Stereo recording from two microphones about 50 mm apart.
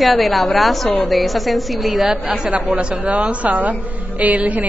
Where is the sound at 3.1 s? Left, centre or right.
Right.